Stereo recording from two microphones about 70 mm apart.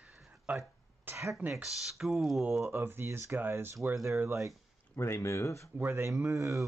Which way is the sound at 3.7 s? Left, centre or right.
Right.